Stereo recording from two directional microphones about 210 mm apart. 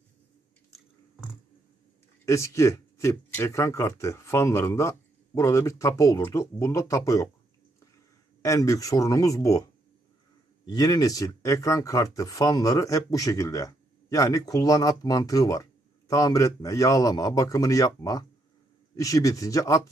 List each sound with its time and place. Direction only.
2.2 s speech: 15° left (ahead or behind)
8.4 s speech: 15° left (ahead or behind)